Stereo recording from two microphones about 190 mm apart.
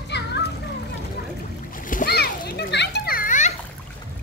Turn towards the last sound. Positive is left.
turn(degrees=40)  # may be behind; listen again after turning